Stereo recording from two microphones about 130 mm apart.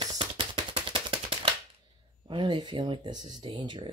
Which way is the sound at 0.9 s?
45° right (ahead or behind).